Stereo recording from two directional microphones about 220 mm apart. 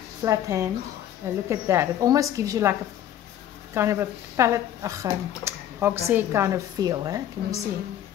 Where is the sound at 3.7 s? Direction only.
10° right (ahead or behind).